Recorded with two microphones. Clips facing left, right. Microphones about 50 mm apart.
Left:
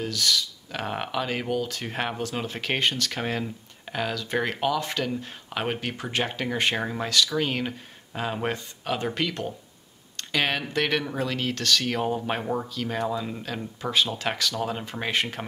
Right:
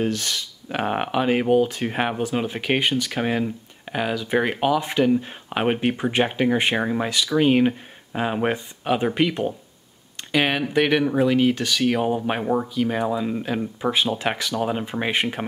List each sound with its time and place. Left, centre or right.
0.0 s speech: right